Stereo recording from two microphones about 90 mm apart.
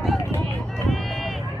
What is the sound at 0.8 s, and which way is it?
Run, centre (ahead or behind).